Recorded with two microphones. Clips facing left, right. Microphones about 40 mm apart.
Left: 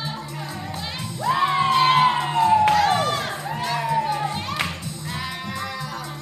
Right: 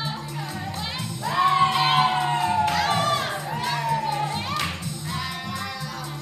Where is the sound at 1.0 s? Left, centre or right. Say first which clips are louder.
Left 2 dB; left.